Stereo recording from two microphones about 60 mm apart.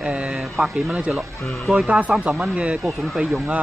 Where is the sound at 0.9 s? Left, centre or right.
Centre.